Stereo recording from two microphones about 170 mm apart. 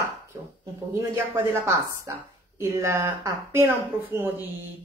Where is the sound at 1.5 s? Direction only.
15° right (ahead or behind).